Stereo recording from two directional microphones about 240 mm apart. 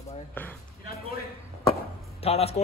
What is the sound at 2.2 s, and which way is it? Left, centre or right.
Speech, left.